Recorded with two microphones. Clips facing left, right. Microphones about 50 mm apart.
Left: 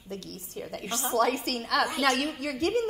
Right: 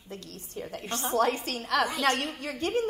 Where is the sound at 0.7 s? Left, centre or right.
Left.